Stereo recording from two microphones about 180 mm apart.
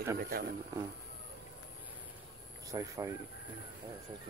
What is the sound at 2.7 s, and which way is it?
Speech, 15° right (ahead or behind).